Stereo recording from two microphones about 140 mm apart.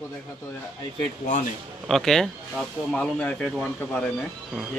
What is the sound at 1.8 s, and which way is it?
A man's voice, centre (ahead or behind).